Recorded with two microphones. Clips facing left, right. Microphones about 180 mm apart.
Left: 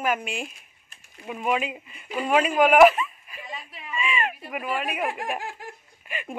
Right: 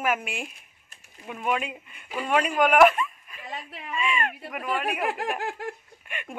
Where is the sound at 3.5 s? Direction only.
65° right (ahead or behind).